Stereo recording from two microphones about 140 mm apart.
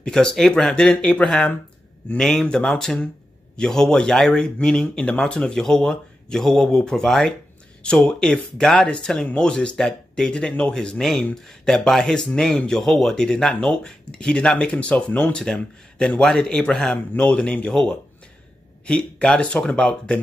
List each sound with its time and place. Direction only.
0.0 s speech: 5° left (ahead or behind)